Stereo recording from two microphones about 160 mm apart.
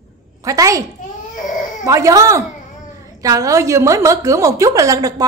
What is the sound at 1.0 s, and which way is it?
Baby cry, 55° left (ahead or behind).